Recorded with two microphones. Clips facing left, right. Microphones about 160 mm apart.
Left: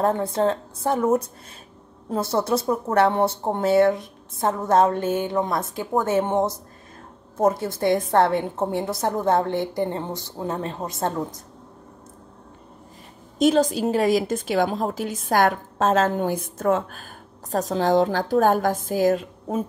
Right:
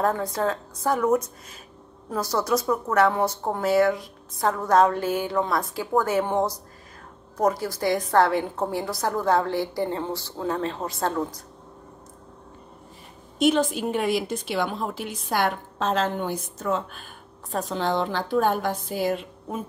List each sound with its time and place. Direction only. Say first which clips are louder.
0.0 s speech: left 3 dB; 25° left (ahead or behind)
13.4 s a woman's voice: left 3 dB; 40° left (ahead or behind)